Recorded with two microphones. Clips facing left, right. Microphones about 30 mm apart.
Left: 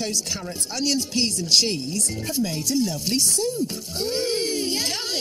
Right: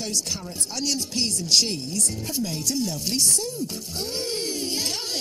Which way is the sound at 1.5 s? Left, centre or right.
Left.